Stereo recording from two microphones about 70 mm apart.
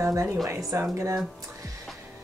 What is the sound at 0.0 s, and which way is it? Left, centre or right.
Speech, right.